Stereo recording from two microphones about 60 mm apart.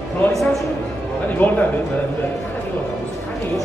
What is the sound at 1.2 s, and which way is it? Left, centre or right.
Speech, left.